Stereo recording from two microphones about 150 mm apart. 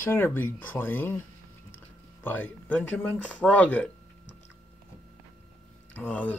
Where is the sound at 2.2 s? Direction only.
10° left (ahead or behind).